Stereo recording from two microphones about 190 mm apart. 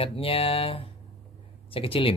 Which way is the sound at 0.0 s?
30° left (ahead or behind).